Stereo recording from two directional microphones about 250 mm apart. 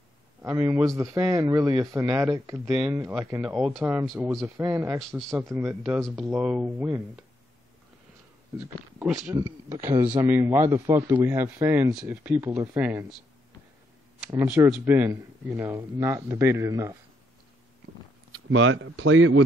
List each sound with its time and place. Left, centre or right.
0.4 s speech: centre
6.0 s speech: centre
8.5 s speech: centre
9.3 s speech: centre
14.3 s speech: centre
18.3 s speech: right